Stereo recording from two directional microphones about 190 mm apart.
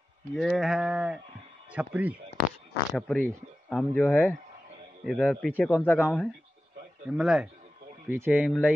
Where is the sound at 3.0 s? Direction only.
5° left (ahead or behind).